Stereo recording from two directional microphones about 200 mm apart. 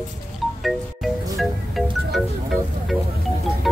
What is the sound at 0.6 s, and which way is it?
Music, centre (ahead or behind).